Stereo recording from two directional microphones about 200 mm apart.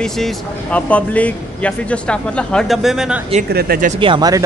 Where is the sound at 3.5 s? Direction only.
50° right (ahead or behind).